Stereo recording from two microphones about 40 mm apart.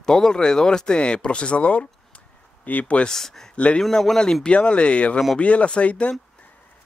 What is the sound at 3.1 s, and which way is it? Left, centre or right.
Speech, centre.